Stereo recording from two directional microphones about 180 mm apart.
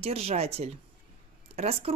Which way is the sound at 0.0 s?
35° right (ahead or behind).